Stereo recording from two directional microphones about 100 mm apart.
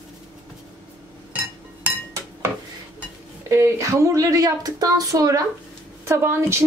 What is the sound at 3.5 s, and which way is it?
Speech, 30° right (ahead or behind).